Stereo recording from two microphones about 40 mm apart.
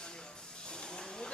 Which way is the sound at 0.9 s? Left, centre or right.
Centre.